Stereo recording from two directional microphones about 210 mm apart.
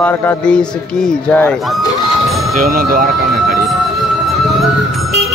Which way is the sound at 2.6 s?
45° right (ahead or behind).